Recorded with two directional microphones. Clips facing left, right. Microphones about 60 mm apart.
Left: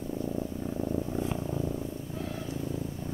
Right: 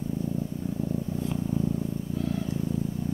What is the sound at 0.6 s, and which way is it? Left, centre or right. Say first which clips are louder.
Purr: right 1 dB; left.